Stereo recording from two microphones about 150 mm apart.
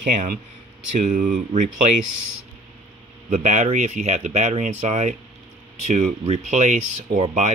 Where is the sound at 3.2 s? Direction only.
55° right (ahead or behind).